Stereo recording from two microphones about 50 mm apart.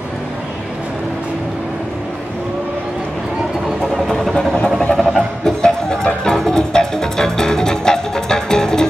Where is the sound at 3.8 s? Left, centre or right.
Centre.